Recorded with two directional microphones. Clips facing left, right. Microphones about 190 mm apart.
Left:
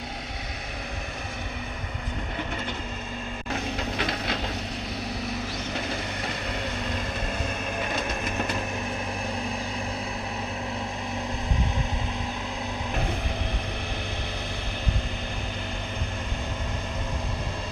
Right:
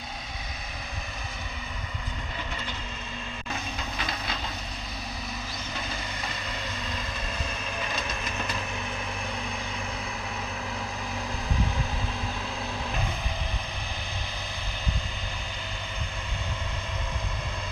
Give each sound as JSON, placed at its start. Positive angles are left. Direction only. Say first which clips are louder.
{"t": 3.5, "sound": "a sound", "louder": "left 7 dB", "side_deg": 70}
{"t": 5.8, "sound": "wood", "louder": "left 3 dB", "side_deg": 65}
{"t": 7.8, "sound": "train", "louder": "left 4 dB", "side_deg": 55}